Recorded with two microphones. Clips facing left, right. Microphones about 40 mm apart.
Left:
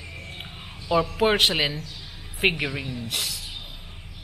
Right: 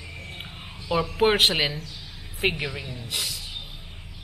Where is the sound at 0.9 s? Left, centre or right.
Centre.